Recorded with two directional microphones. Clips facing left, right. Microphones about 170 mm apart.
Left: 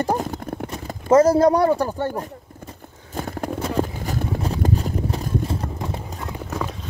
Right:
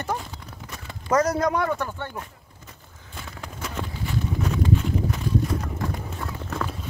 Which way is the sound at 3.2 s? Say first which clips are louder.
Left 12 dB; 50° left (ahead or behind).